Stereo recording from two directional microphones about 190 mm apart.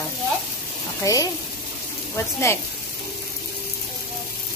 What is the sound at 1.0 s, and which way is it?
Speech, 20° left (ahead or behind).